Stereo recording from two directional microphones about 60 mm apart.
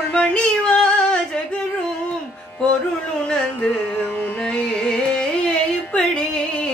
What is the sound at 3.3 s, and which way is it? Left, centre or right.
Carnatic music, centre.